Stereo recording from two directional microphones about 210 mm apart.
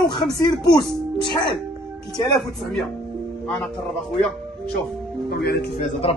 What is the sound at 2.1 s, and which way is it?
Speech, 20° left (ahead or behind).